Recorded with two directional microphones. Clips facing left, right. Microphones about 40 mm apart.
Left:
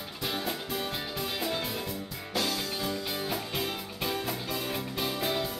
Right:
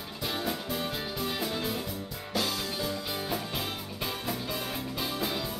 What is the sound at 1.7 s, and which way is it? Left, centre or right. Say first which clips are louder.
Music: right 1 dB; centre.